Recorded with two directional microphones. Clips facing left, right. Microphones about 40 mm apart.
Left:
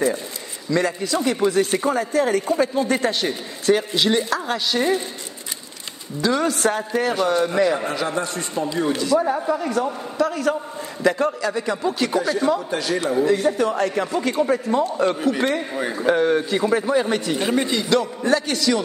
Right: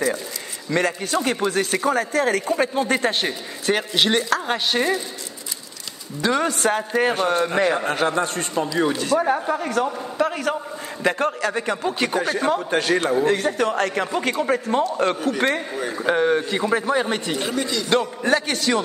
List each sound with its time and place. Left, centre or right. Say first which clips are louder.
0.7 s a man's voice: left 1 dB; right
1.9 s a man's voice: even; right
2.6 s a man's voice: left 1 dB; right
4.5 s a man's voice: even; right
6.2 s a man's voice: even; right
10.1 s a sound: left 2 dB; right
11.1 s a man's voice: left 1 dB; right
16.1 s a man's voice: left 1 dB; centre
17.4 s speech: left 3 dB; left
17.8 s a man's voice: left 1 dB; right